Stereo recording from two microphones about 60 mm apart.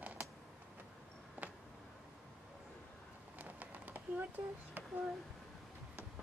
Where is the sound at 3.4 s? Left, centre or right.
Right.